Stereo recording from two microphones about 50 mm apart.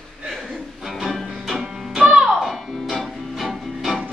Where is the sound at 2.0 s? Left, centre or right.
Centre.